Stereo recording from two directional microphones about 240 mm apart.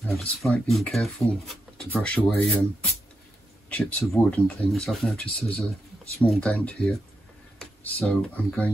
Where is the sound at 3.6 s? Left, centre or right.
Centre.